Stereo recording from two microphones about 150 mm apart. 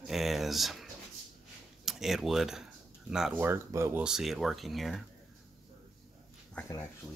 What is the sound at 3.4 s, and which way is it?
Speech, 15° right (ahead or behind).